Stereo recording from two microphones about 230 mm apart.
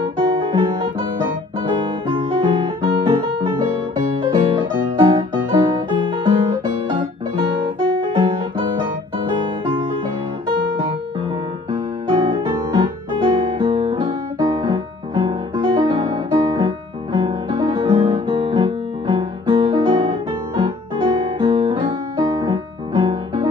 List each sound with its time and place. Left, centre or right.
0.2 s music: right
11.7 s music: right